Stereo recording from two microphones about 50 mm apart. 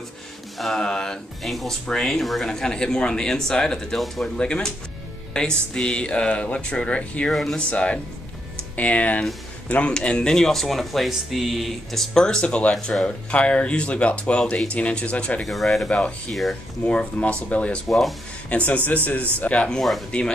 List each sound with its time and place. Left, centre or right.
0.6 s speech: centre; by 7.2 s left
7.2 s speech: centre
7.7 s speech: left
15.4 s speech: centre
16.8 s speech: left
17.8 s speech: centre
18.5 s speech: left